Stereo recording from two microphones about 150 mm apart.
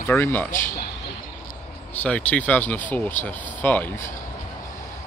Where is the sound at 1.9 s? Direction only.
10° left (ahead or behind).